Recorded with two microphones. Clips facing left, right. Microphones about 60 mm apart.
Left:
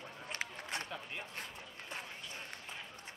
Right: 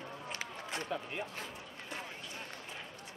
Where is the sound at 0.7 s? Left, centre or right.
Centre.